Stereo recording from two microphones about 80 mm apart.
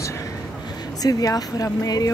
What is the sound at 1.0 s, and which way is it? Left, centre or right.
Speech, left.